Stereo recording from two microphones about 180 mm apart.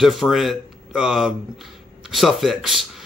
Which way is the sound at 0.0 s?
Centre (ahead or behind).